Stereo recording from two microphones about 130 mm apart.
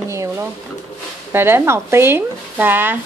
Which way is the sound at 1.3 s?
20° right (ahead or behind).